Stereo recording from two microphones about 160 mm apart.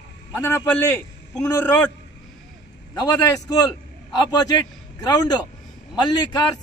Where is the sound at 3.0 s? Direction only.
20° left (ahead or behind).